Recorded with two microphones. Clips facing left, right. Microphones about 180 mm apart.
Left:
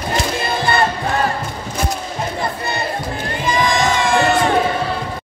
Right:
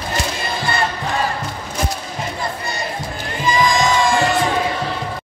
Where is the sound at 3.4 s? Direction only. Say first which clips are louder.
Right 1 dB; 60° left (ahead or behind).